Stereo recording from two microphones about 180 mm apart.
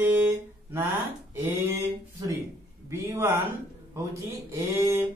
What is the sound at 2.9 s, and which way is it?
Speech, 15° right (ahead or behind).